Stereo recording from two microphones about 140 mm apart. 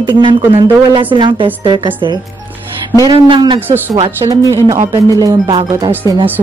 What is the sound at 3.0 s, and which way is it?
Speech, 30° right (ahead or behind).